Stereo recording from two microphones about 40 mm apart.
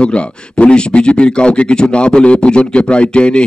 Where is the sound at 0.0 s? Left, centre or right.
Left.